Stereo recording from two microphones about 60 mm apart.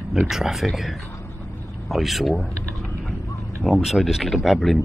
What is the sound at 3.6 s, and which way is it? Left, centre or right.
Speech, centre.